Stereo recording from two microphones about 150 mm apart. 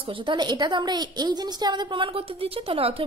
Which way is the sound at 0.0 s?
35° right (ahead or behind).